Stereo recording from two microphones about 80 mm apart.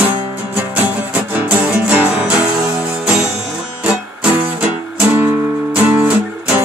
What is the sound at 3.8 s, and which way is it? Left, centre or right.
Music, centre.